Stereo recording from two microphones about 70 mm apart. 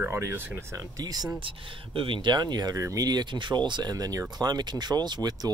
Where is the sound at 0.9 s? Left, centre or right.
Right.